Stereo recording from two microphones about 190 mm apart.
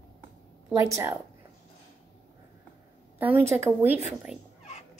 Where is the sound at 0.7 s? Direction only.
15° right (ahead or behind).